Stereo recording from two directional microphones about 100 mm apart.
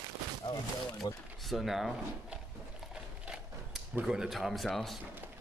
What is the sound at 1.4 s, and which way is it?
Speech, centre (ahead or behind).